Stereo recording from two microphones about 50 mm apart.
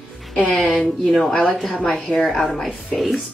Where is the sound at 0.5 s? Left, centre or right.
Centre.